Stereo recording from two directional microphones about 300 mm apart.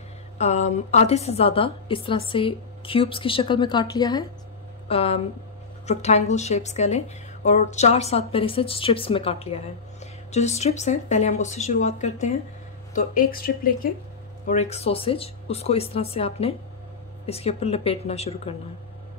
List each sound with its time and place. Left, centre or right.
0.4 s a woman's voice: left